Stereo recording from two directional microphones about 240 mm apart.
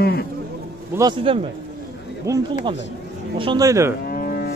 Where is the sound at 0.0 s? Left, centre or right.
Left.